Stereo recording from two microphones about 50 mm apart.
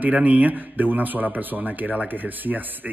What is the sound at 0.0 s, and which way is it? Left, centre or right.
Speech, right.